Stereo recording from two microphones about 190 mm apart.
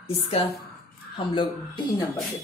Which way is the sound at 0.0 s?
30° left (ahead or behind).